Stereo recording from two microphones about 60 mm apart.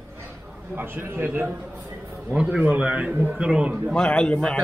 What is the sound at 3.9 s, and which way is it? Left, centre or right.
Speech, centre.